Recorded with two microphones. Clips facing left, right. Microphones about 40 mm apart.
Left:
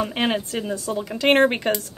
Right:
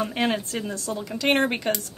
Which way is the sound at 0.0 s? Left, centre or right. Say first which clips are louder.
Left 2 dB; centre.